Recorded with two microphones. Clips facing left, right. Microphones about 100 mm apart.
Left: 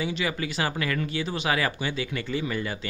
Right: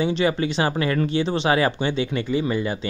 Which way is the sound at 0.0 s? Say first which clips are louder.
Right 8 dB; 30° right (ahead or behind).